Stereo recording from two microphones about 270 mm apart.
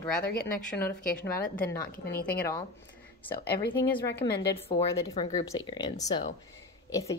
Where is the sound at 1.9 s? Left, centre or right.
Left.